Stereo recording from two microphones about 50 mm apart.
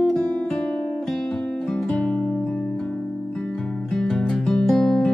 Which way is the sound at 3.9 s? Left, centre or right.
Centre.